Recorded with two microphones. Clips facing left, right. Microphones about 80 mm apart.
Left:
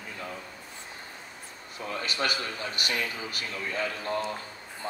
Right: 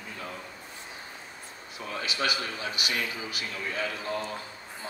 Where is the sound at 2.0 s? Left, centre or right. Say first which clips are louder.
Right 1 dB; left.